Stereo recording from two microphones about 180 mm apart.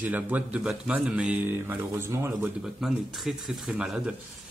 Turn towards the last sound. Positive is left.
turn(degrees=0)  # may be behind; listen again after turning